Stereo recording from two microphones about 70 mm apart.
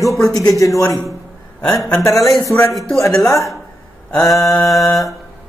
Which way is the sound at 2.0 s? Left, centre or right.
Left.